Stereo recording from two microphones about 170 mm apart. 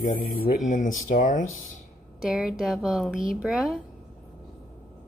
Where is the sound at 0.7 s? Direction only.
50° left (ahead or behind).